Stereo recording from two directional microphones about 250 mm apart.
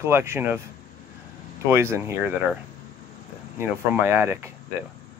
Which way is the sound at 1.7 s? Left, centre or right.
Centre.